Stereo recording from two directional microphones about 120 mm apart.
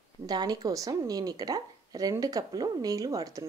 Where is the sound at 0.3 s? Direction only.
35° right (ahead or behind).